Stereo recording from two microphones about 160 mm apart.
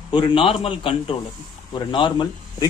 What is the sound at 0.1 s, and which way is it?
A man's voice, 35° left (ahead or behind).